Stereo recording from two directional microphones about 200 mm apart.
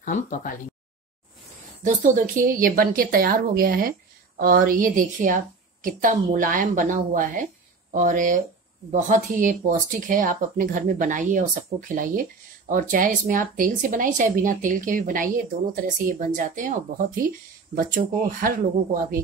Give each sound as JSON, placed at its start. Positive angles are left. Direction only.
{"t": 0.0, "sound": "speech", "side_deg": 40}
{"t": 1.9, "sound": "speech", "side_deg": -40}